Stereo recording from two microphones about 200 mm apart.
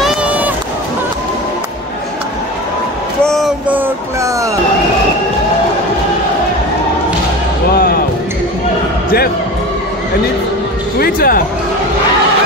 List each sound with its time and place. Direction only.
0.0 s run: 5° right (ahead or behind)
3.3 s a sound: centre (ahead or behind)
11.0 s speech: 45° left (ahead or behind)